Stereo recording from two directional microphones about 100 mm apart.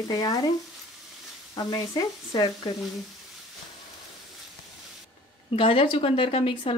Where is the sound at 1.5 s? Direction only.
40° left (ahead or behind).